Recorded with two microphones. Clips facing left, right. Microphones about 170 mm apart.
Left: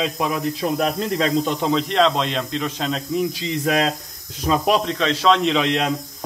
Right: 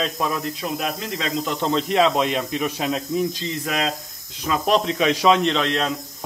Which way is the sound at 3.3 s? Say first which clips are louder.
Left 3 dB; 15° left (ahead or behind).